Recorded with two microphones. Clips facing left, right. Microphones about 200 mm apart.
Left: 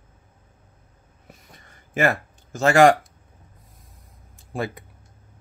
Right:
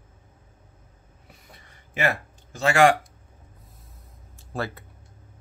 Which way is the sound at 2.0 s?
45° left (ahead or behind).